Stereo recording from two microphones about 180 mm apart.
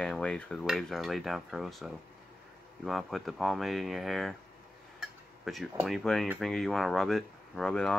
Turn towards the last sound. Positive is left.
turn(degrees=5)  # may be behind; listen again after turning